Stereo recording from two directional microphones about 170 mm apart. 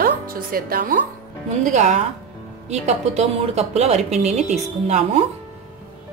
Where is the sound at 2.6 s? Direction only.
40° right (ahead or behind).